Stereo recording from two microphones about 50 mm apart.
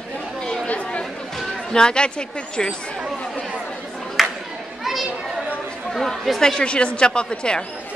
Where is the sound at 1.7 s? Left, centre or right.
Centre.